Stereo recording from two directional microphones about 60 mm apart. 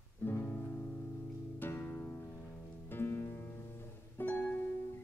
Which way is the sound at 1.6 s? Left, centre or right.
Left.